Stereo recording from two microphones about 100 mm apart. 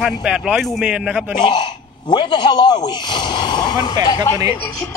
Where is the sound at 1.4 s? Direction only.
50° left (ahead or behind).